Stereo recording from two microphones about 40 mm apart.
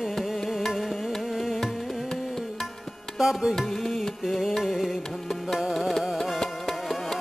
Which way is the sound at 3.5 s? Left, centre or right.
Centre.